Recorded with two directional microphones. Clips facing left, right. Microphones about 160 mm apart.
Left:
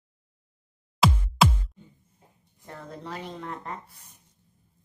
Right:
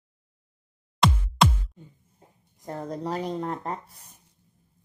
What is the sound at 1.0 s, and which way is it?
Music, centre (ahead or behind).